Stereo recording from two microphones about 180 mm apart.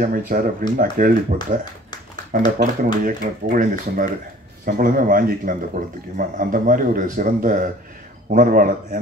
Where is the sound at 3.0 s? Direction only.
50° right (ahead or behind).